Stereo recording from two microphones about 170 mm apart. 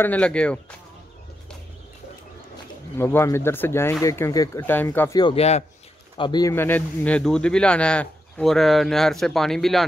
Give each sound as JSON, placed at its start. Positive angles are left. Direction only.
{"t": 0.0, "sound": "speech", "side_deg": 10}
{"t": 3.0, "sound": "speech", "side_deg": 15}
{"t": 5.2, "sound": "speech", "side_deg": 35}
{"t": 6.1, "sound": "speech", "side_deg": 25}
{"t": 6.5, "sound": "speech", "side_deg": 10}